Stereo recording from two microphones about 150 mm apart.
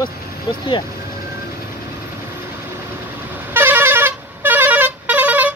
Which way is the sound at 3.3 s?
15° right (ahead or behind).